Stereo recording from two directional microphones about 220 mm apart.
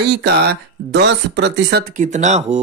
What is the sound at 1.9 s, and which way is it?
Speech, 35° right (ahead or behind).